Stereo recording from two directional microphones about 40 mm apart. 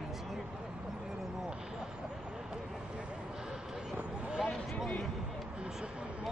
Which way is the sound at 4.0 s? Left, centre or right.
Right.